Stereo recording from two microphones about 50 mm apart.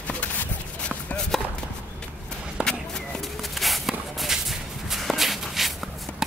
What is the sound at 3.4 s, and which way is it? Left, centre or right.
Walk, centre.